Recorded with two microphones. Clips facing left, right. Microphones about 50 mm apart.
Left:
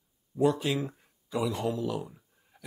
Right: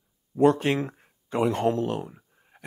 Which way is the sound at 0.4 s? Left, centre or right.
Right.